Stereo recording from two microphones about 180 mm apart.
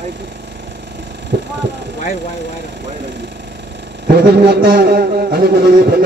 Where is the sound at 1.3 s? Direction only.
65° right (ahead or behind).